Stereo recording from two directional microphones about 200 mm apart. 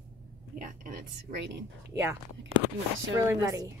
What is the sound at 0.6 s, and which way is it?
Speech, 40° right (ahead or behind).